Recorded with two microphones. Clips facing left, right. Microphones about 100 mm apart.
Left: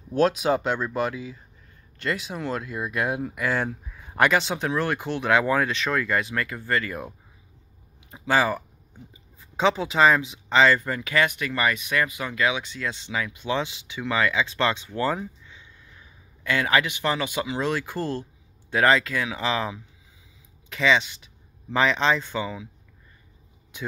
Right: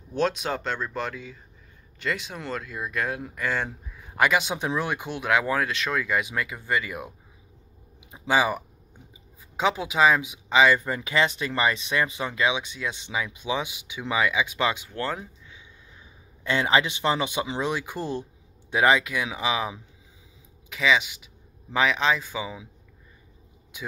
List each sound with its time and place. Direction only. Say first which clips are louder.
0.1 s speech: left 5 dB; 5° left (ahead or behind)
4.3 s speech: left 1 dB; 10° right (ahead or behind)
16.0 s speech: even; 25° right (ahead or behind); by 22.6 s 5° right (ahead or behind)
23.7 s speech: left 3 dB; 5° right (ahead or behind)